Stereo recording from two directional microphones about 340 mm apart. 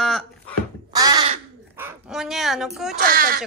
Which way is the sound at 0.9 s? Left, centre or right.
Centre.